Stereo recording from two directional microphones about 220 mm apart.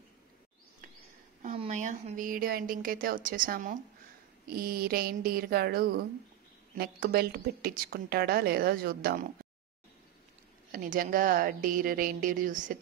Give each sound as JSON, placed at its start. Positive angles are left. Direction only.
{"t": 1.4, "sound": "a woman's voice", "side_deg": -30}
{"t": 10.7, "sound": "a woman's voice", "side_deg": -40}